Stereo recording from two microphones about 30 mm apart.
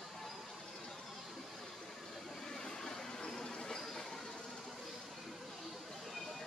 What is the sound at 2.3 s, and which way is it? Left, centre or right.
Vehicle, centre.